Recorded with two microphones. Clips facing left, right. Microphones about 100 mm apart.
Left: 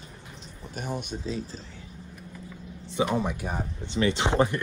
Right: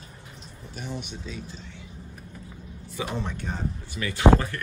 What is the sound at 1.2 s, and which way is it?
Speech, 35° left (ahead or behind).